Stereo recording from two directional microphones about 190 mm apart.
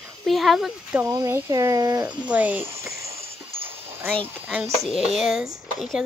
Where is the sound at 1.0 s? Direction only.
15° right (ahead or behind).